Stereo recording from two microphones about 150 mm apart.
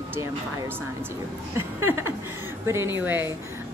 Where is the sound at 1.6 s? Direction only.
15° right (ahead or behind).